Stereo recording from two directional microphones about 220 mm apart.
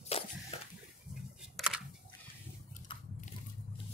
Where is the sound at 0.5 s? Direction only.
25° left (ahead or behind).